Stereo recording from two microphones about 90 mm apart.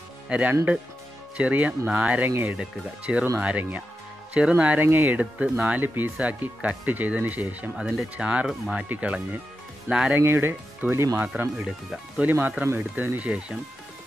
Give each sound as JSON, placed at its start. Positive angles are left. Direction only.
{"t": 0.3, "sound": "speech", "side_deg": -15}
{"t": 7.7, "sound": "speech", "side_deg": -5}
{"t": 10.2, "sound": "speech", "side_deg": -25}